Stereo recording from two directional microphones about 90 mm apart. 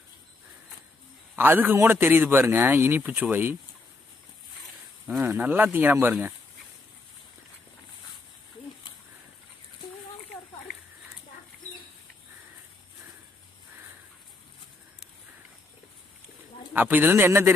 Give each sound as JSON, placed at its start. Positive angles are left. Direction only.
{"t": 1.3, "sound": "a man's voice", "side_deg": -20}
{"t": 5.1, "sound": "a man's voice", "side_deg": -30}
{"t": 16.7, "sound": "a man's voice", "side_deg": -20}